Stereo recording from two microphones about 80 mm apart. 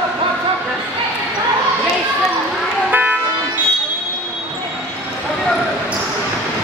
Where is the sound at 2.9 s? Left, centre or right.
Right.